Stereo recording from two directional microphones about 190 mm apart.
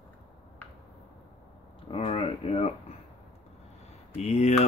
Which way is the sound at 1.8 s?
30° left (ahead or behind).